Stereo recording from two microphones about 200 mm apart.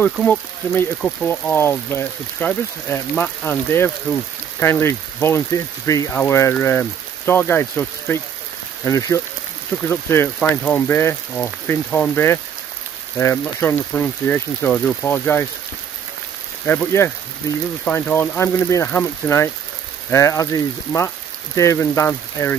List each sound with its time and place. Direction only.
0.0 s speech: 10° left (ahead or behind)
16.6 s speech: 10° left (ahead or behind)